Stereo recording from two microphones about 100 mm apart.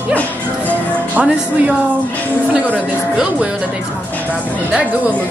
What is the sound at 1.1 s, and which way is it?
A man's voice, 15° right (ahead or behind).